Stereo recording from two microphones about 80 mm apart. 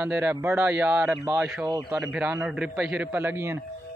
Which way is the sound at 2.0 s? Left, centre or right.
Right.